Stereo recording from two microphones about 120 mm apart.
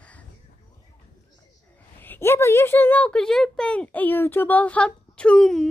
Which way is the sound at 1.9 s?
15° left (ahead or behind).